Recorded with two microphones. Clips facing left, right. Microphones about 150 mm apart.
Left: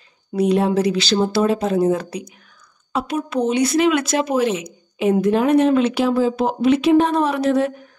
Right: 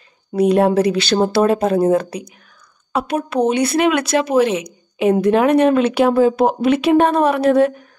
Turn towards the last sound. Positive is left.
turn(degrees=-55)  # may be behind; listen again after turning